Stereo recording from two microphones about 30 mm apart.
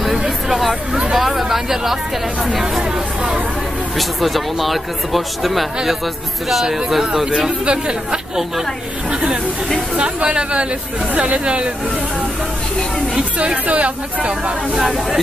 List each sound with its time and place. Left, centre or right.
1.1 s speech: centre
3.2 s speech: right
3.9 s speech: centre
7.2 s speech: right
9.9 s speech: right
13.7 s speech: right